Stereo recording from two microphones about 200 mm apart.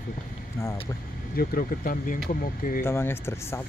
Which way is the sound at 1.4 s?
45° left (ahead or behind).